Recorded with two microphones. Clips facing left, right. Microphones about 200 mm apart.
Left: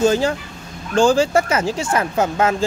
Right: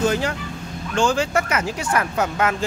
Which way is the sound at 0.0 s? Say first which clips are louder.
Left 5 dB; 30° left (ahead or behind).